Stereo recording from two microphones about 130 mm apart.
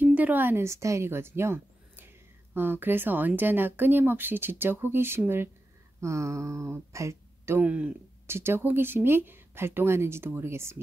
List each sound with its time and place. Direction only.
0.0 s speech: 15° right (ahead or behind)